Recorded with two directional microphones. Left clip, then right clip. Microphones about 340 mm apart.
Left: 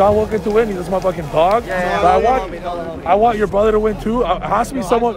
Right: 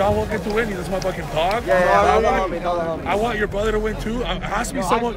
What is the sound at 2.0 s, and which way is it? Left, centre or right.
Speech, centre.